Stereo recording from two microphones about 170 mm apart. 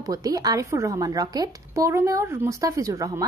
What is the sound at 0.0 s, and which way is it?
A woman's voice, 20° right (ahead or behind).